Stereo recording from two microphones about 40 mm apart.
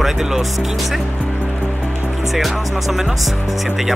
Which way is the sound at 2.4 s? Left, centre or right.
Centre.